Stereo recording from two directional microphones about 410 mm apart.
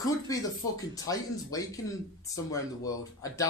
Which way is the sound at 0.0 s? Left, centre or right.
Centre.